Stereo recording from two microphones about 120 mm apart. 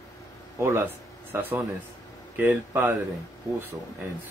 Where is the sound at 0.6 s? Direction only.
20° right (ahead or behind).